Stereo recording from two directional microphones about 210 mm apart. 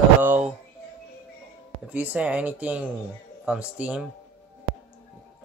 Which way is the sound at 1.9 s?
5° right (ahead or behind).